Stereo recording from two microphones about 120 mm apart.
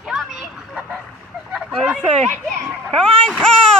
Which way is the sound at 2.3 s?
5° left (ahead or behind).